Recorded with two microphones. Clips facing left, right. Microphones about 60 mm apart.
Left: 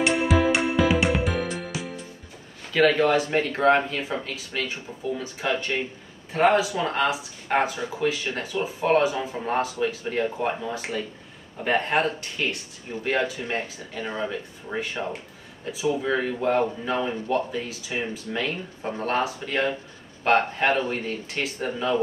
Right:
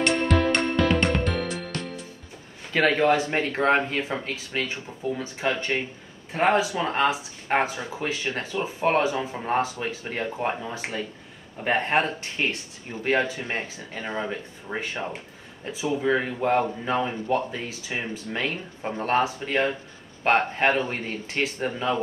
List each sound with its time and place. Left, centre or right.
0.0 s music: centre
2.7 s speech: right
15.6 s speech: right